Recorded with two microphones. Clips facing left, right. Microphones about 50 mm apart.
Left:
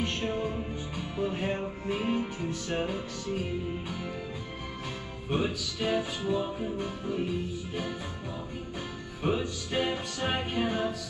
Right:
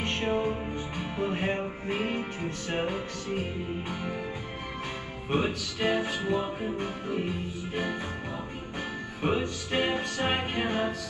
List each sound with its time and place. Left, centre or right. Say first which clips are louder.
0.0 s music: right 3 dB; right
2.7 s speech: right 3 dB; right
3.9 s music: right 3 dB; centre
5.3 s speech: right 2 dB; right
9.7 s speech: right 2 dB; right